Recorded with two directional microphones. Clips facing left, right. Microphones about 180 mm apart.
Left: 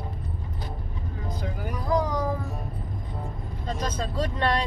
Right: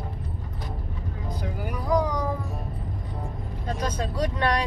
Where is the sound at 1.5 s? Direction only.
5° right (ahead or behind).